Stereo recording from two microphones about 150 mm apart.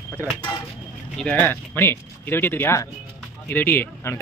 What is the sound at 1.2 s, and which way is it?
Speech, 10° left (ahead or behind).